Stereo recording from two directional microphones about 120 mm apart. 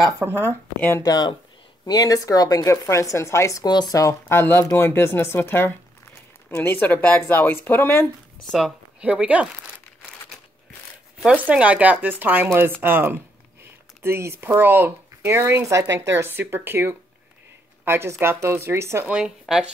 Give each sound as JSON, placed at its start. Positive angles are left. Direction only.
{"t": 0.3, "sound": "speech", "side_deg": 15}
{"t": 1.0, "sound": "speech", "side_deg": 35}
{"t": 8.5, "sound": "speech", "side_deg": 0}
{"t": 11.2, "sound": "speech", "side_deg": -10}
{"t": 19.1, "sound": "speech", "side_deg": -5}